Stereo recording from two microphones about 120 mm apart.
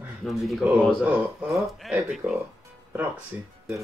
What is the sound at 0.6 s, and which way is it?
Speech, 10° right (ahead or behind).